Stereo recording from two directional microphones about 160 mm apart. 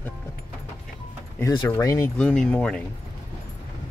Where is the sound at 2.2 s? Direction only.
5° left (ahead or behind).